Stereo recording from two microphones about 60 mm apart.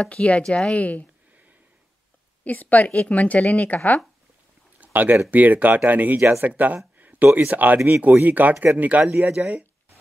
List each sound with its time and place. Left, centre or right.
0.0 s speech: centre
2.4 s speech: left
4.7 s a sound: right
5.3 s speech: right
7.0 s a sound: right
7.3 s speech: right